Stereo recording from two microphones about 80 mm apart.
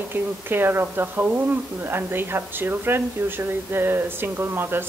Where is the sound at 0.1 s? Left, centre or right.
Right.